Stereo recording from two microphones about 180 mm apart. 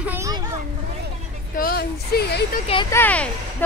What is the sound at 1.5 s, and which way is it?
Speech, 60° left (ahead or behind).